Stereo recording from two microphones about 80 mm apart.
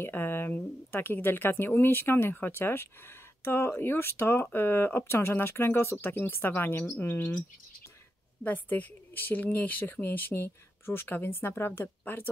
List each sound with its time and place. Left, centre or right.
0.0 s speech: left
8.5 s speech: left